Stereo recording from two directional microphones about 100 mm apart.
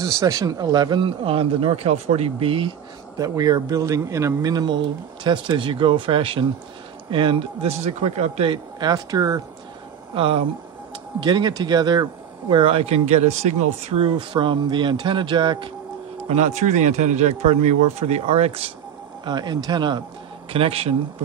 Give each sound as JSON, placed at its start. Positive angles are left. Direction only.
{"t": 0.0, "sound": "speech", "side_deg": -35}
{"t": 3.2, "sound": "a man's voice", "side_deg": -35}
{"t": 7.8, "sound": "speech", "side_deg": -90}
{"t": 8.7, "sound": "speech", "side_deg": -40}
{"t": 10.1, "sound": "speech", "side_deg": -65}
{"t": 11.2, "sound": "a man's voice", "side_deg": -45}
{"t": 12.6, "sound": "speech", "side_deg": -75}
{"t": 13.8, "sound": "a man's voice", "side_deg": -75}
{"t": 14.1, "sound": "a man's voice", "side_deg": -55}
{"t": 16.3, "sound": "speech", "side_deg": -90}
{"t": 19.2, "sound": "a man's voice", "side_deg": -45}
{"t": 20.5, "sound": "a man's voice", "side_deg": -75}